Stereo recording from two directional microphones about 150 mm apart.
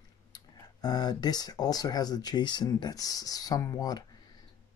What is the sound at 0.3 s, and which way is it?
Speech, 25° left (ahead or behind).